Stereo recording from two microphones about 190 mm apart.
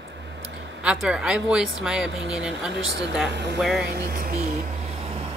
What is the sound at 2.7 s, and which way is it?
Speech, 65° right (ahead or behind).